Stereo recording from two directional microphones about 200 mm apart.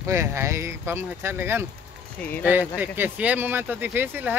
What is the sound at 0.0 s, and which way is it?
Speech, 15° right (ahead or behind).